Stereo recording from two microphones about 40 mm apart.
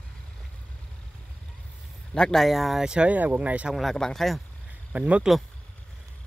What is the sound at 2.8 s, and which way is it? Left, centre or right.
Speech, right.